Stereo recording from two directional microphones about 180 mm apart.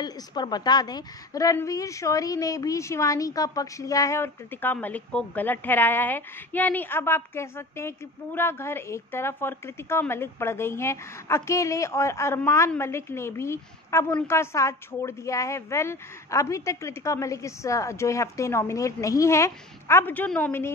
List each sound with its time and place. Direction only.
0.0 s a woman's voice: 25° left (ahead or behind)